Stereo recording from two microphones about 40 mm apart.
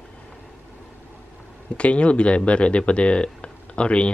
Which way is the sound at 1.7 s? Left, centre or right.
Left.